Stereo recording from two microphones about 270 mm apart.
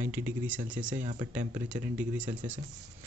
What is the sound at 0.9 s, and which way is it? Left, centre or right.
Speech, right.